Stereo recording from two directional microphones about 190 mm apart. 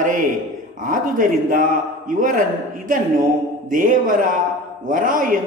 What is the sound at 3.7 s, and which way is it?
A man's voice, 45° right (ahead or behind).